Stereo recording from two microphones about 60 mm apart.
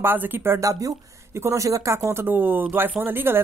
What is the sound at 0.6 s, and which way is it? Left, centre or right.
Speech, right.